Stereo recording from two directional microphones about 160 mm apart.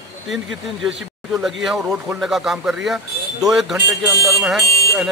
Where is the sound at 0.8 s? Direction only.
Centre (ahead or behind).